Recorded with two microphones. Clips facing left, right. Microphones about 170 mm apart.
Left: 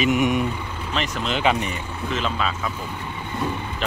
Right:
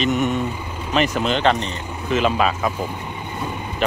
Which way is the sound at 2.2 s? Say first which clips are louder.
Right 7 dB; 60° right (ahead or behind).